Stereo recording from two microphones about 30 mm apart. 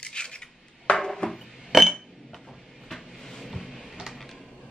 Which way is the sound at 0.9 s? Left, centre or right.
Left.